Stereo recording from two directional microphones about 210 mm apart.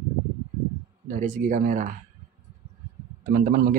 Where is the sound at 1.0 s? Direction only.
40° right (ahead or behind).